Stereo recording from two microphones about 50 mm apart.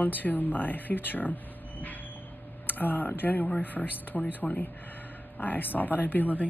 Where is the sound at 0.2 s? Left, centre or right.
Left.